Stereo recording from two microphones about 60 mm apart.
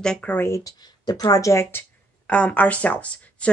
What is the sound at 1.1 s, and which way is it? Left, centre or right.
Speech, left.